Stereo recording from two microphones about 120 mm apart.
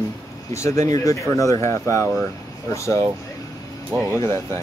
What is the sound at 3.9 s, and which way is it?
Speech, 20° right (ahead or behind).